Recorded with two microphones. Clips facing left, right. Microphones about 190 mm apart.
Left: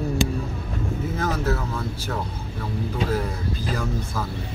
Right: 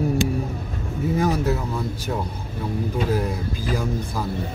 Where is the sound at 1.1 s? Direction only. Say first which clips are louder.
Right 4 dB; 15° right (ahead or behind).